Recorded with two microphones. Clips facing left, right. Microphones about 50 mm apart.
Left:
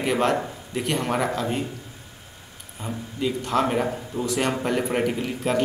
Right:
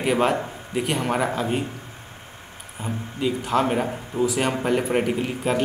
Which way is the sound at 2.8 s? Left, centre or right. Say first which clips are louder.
Right 1 dB; centre.